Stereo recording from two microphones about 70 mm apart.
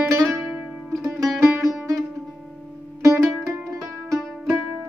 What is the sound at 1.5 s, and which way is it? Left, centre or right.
Music, right.